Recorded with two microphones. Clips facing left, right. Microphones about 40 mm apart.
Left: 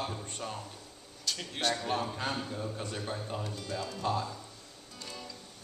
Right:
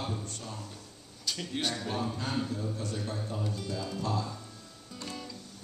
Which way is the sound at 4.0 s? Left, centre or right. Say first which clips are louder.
Left 2 dB; left.